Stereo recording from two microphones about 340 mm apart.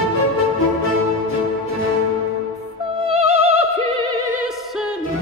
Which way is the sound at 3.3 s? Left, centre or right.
Centre.